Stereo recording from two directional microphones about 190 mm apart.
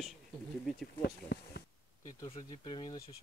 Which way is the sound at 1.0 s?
55° left (ahead or behind).